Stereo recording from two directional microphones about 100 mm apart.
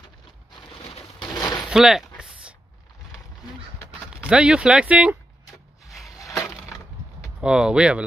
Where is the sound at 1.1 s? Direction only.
40° left (ahead or behind).